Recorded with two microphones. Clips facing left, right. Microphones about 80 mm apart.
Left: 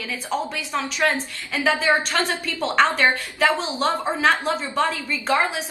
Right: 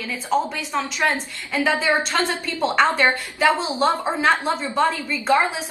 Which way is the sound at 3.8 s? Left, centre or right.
Right.